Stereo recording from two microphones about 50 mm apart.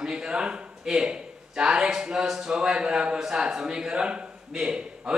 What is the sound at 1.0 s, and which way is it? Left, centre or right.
A man's voice, centre.